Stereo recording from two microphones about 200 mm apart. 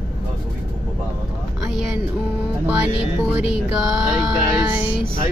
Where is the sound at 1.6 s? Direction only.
5° right (ahead or behind).